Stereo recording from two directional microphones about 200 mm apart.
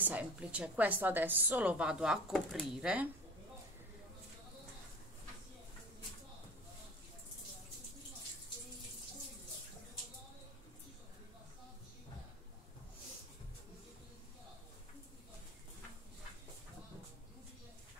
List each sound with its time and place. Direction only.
0.0 s a woman's voice: 5° right (ahead or behind)